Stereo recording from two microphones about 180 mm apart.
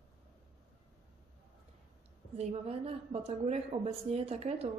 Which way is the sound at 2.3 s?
35° right (ahead or behind).